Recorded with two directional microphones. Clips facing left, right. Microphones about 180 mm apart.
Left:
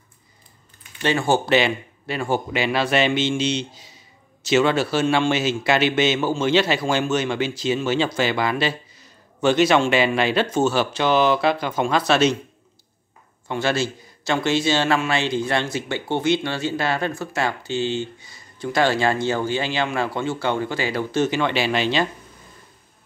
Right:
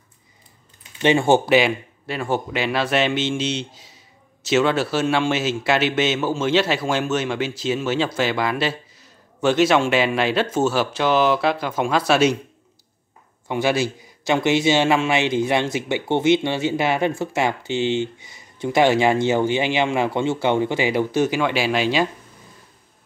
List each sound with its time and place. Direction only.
0.9 s speech: 25° right (ahead or behind)
1.5 s a man's voice: 5° right (ahead or behind)
13.5 s a man's voice: 15° right (ahead or behind)